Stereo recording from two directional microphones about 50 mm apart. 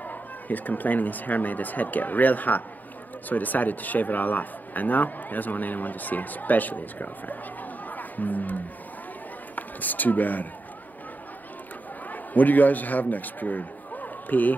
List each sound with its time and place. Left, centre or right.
0.0 s speech: left
7.9 s music: left
9.6 s speech: left
12.1 s a man's voice: left